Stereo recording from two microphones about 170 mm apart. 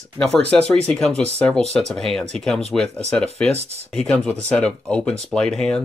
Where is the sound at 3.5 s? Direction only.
40° right (ahead or behind).